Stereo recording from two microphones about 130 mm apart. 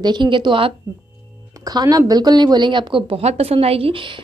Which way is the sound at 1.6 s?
30° right (ahead or behind).